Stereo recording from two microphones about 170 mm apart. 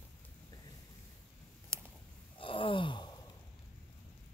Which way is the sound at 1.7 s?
15° right (ahead or behind).